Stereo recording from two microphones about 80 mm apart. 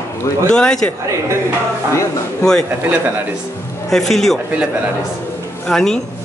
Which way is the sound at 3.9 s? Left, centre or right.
Centre.